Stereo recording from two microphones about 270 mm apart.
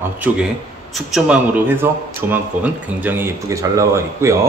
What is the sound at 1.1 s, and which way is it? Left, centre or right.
A man's voice, centre.